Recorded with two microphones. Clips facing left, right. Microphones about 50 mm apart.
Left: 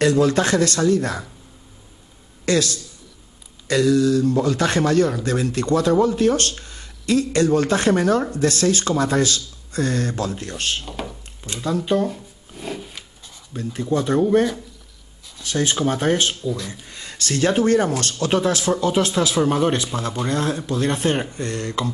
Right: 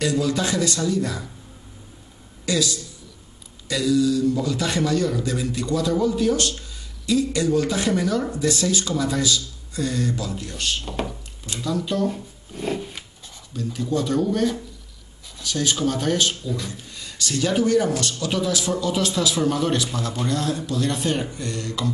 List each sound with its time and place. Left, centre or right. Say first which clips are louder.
0.0 s speech: left 5 dB; left
2.4 s a man's voice: left 4 dB; left
10.9 s drawer open or close: right 2 dB; centre
11.4 s speech: left 3 dB; left
12.1 s a sound: right 3 dB; centre
13.5 s speech: left 2 dB; left
16.4 s speech: left 3 dB; centre
16.9 s speech: left 3 dB; left